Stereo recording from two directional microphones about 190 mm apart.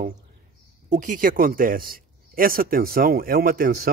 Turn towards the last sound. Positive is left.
turn(degrees=-50)  # may be behind; listen again after turning